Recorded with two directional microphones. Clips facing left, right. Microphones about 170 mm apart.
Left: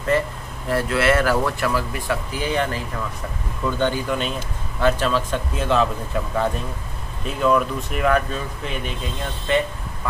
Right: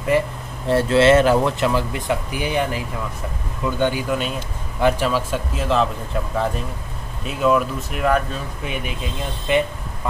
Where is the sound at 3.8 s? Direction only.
10° right (ahead or behind).